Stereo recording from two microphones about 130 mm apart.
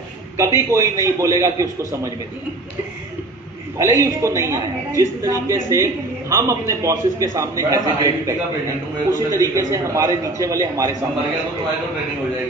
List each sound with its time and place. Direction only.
0.4 s a woman's voice: 25° right (ahead or behind)
3.7 s a woman's voice: 25° right (ahead or behind)